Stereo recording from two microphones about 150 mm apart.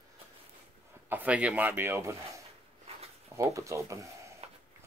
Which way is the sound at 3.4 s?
20° right (ahead or behind).